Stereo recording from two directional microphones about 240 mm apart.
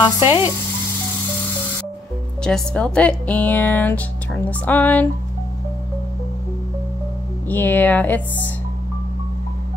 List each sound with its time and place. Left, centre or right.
0.0 s speech: centre
2.4 s speech: centre
7.4 s speech: centre